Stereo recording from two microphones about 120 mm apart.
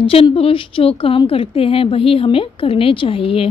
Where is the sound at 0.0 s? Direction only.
50° left (ahead or behind).